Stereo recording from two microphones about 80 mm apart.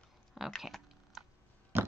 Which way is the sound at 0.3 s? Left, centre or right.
Centre.